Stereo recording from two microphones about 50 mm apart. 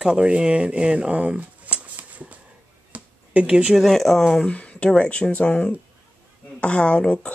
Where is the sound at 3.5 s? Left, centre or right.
Centre.